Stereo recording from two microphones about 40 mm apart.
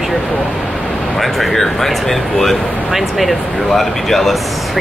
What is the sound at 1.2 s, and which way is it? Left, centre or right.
Speech, centre.